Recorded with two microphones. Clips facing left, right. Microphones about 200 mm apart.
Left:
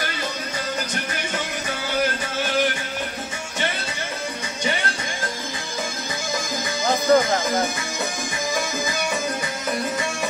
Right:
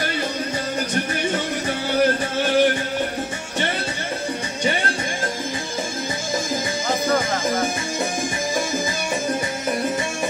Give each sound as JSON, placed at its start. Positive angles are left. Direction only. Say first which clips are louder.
{"t": 2.4, "sound": "music", "louder": "right 5 dB", "side_deg": -30}
{"t": 6.9, "sound": "music", "louder": "left 4 dB", "side_deg": -30}